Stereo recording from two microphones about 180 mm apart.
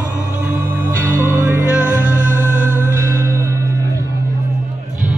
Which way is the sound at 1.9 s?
15° left (ahead or behind).